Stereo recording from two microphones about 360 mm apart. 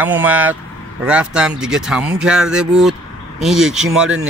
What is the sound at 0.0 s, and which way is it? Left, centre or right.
Speech, centre.